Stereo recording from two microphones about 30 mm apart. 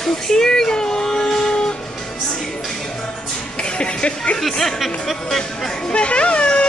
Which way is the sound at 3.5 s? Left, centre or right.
Left.